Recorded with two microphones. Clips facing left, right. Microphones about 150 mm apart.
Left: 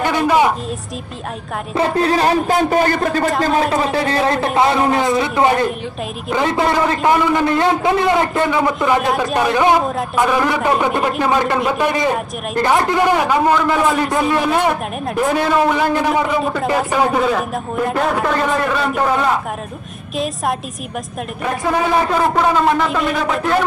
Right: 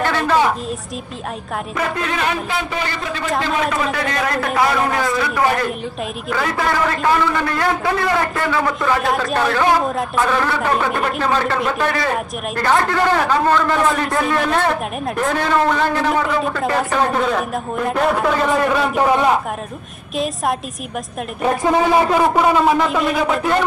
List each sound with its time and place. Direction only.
0.0 s a sound: 15° left (ahead or behind)
1.8 s a man's voice: 35° left (ahead or behind); by 19.3 s 15° right (ahead or behind)
21.9 s speech: 10° right (ahead or behind)